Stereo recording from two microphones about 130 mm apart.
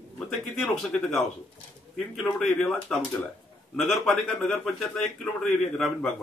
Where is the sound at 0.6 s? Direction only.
5° left (ahead or behind).